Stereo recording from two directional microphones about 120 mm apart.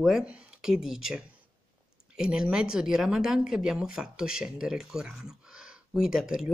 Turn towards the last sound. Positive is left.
turn(degrees=-5)  # may be behind; listen again after turning